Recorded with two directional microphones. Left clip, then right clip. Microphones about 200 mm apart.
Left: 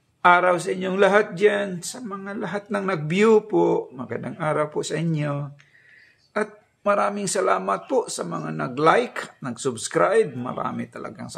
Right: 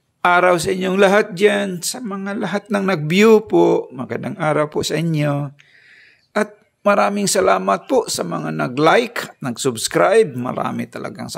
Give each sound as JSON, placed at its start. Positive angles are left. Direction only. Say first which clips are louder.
{"t": 0.2, "sound": "speech", "louder": "right 3 dB", "side_deg": -50}